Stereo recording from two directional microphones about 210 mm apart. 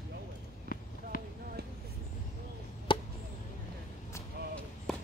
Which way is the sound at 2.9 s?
25° left (ahead or behind).